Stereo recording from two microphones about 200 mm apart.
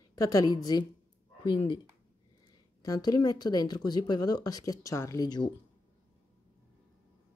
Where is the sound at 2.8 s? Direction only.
20° left (ahead or behind).